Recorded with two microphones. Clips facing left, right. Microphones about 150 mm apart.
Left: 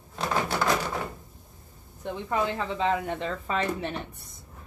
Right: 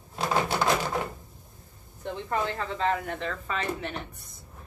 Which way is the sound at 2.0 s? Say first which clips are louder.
Left 2 dB; 10° left (ahead or behind).